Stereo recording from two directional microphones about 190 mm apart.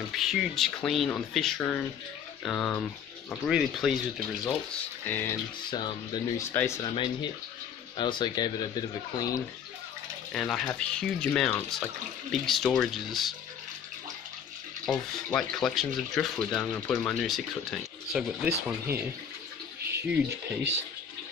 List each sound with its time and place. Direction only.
0.1 s speech: centre (ahead or behind)
5.0 s speech: 10° left (ahead or behind)
5.7 s speech: 25° left (ahead or behind)
8.0 s speech: 25° left (ahead or behind)
10.3 s speech: centre (ahead or behind)
14.9 s speech: centre (ahead or behind)
20.0 s speech: 5° right (ahead or behind)
20.2 s speech: 70° right (ahead or behind)